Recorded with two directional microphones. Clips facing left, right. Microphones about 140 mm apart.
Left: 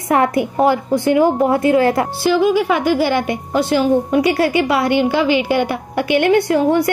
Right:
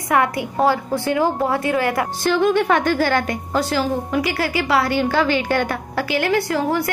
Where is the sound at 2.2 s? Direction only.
5° left (ahead or behind).